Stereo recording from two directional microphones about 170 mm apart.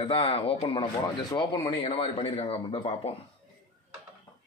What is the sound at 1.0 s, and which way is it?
Speech, 20° left (ahead or behind).